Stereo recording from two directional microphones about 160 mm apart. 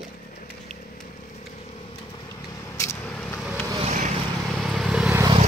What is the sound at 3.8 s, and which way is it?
Vehicle, 50° right (ahead or behind).